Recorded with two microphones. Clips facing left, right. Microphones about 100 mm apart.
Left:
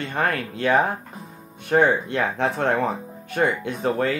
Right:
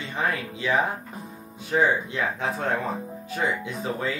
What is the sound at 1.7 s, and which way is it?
Speech, 60° left (ahead or behind).